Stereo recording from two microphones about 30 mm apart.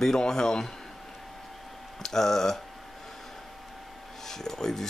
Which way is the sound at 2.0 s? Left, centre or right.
Centre.